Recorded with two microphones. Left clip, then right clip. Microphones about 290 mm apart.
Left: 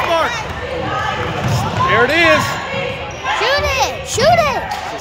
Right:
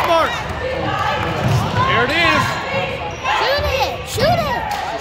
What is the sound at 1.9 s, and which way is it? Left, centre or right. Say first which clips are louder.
Speech: left 4 dB; centre.